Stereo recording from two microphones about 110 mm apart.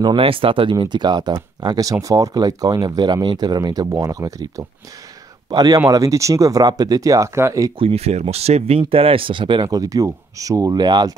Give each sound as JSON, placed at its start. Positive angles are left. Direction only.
{"t": 0.0, "sound": "speech", "side_deg": -50}
{"t": 7.8, "sound": "speech", "side_deg": -70}